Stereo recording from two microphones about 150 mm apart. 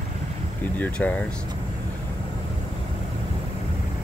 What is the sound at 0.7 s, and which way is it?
Speech, 10° left (ahead or behind).